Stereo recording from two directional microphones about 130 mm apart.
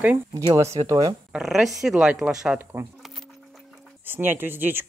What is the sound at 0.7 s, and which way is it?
Speech, 30° right (ahead or behind).